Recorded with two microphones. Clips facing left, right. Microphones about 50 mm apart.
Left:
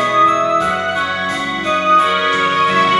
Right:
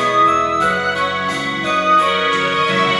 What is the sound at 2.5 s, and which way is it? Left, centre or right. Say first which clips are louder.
Music: left 3 dB; left.